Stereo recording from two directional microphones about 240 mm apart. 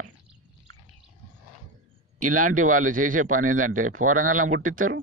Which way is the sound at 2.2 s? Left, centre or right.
Right.